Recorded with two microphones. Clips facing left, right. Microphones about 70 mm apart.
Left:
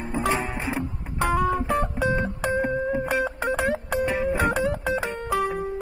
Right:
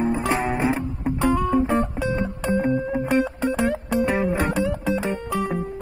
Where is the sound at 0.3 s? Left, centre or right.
Centre.